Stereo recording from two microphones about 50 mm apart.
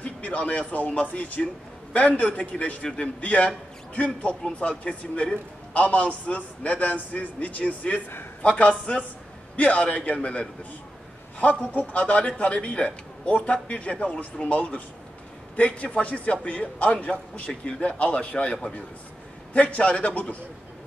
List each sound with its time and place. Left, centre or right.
0.0 s a man's voice: left
11.6 s a man's voice: left